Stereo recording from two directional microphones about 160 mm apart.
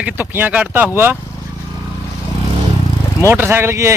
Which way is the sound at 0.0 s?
10° right (ahead or behind).